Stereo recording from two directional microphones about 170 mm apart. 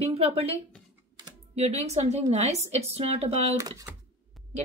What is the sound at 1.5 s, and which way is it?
Speech, 40° right (ahead or behind).